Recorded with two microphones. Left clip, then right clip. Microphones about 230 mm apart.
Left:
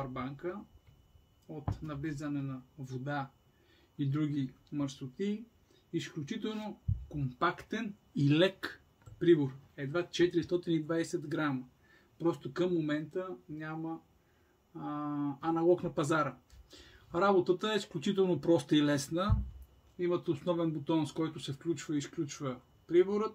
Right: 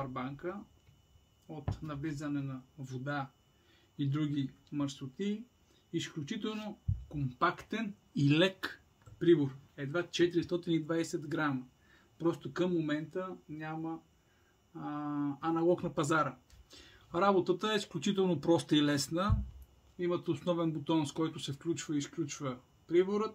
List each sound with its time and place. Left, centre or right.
0.0 s speech: centre